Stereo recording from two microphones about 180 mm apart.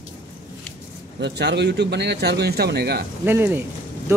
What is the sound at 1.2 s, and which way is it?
Speech, 70° right (ahead or behind).